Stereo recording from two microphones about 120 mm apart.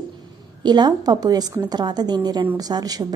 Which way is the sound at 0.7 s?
35° right (ahead or behind).